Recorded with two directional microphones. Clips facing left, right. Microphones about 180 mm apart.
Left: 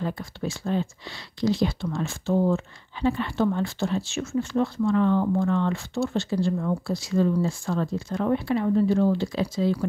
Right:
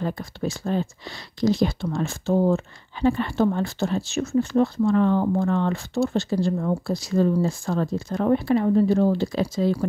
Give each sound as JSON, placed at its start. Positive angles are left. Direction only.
{"t": 0.0, "sound": "speech", "side_deg": -45}